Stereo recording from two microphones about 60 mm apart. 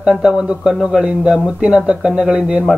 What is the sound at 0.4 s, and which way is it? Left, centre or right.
Speech, centre.